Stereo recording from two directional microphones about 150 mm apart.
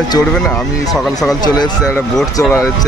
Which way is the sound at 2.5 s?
20° left (ahead or behind).